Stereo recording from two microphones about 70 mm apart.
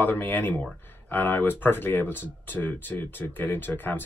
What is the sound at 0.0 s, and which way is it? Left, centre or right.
Speech, left.